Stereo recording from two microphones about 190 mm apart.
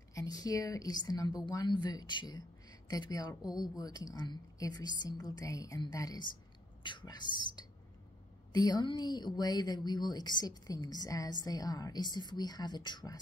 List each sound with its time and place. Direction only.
0.1 s a woman's voice: 20° left (ahead or behind)